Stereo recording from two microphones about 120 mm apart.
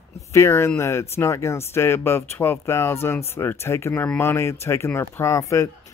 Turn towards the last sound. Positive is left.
turn(degrees=25)  # may be behind; listen again after turning